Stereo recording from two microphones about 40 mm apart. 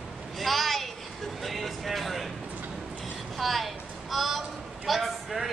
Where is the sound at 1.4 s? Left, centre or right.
Centre.